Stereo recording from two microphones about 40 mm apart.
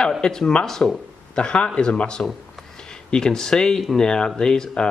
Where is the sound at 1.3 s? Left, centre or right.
Left.